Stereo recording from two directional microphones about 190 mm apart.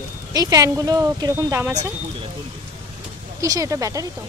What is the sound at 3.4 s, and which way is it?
Speech, 15° right (ahead or behind).